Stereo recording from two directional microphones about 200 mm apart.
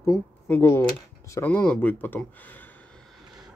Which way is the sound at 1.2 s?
15° left (ahead or behind).